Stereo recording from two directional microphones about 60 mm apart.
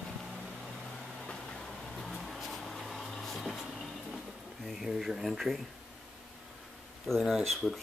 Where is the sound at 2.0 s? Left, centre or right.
Centre.